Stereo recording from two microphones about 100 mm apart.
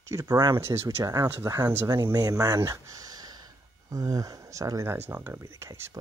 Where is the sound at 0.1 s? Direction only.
35° right (ahead or behind).